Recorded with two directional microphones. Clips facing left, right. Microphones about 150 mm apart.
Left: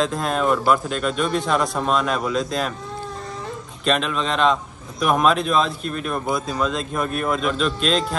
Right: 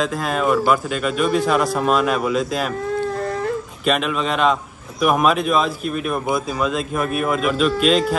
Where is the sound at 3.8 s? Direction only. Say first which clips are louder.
Even; 5° right (ahead or behind).